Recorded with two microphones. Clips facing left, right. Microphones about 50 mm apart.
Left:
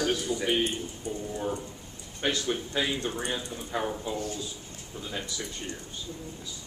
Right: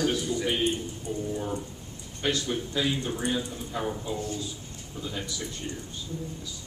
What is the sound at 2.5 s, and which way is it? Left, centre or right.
Speech, centre.